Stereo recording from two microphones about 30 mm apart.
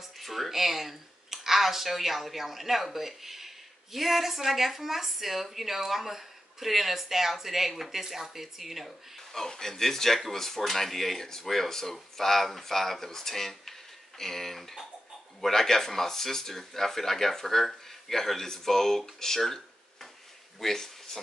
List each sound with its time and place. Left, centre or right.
0.2 s a sound: centre
0.5 s speech: centre
9.3 s speech: centre